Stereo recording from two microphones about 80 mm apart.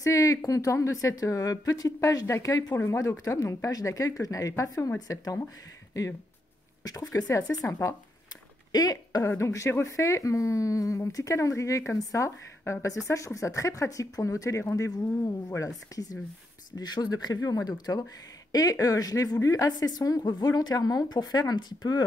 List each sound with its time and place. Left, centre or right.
0.0 s a woman's voice: left
2.7 s a woman's voice: left
6.8 s a woman's voice: left
9.2 s speech: left
14.9 s a woman's voice: left
16.7 s a woman's voice: left